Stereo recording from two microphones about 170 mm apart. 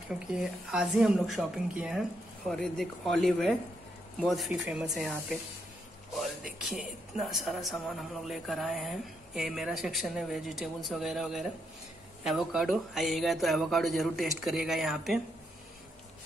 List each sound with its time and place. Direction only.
0.1 s a woman's voice: 5° right (ahead or behind)
6.6 s a woman's voice: centre (ahead or behind)